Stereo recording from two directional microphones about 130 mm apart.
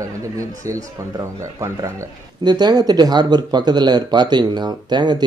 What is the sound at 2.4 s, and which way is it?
Speech, 35° right (ahead or behind).